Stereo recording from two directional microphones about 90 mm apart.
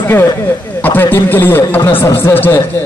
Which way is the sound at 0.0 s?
25° left (ahead or behind).